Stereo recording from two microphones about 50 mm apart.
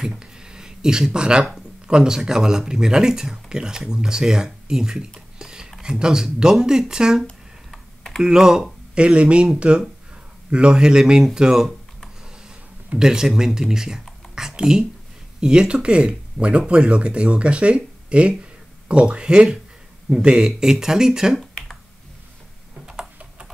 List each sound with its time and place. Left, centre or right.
0.0 s a sound: centre
1.9 s speech: centre
5.4 s a sound: centre
5.8 s speech: centre
7.7 s computer keyboard: centre
8.2 s speech: centre
8.9 s speech: right
13.0 s speech: centre
21.4 s finger snapping: centre